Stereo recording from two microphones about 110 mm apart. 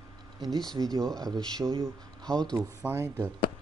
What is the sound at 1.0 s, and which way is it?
Speech, 5° left (ahead or behind).